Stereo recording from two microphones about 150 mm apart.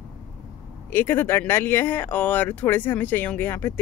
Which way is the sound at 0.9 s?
15° left (ahead or behind).